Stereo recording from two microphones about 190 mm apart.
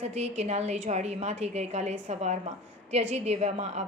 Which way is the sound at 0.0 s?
35° right (ahead or behind).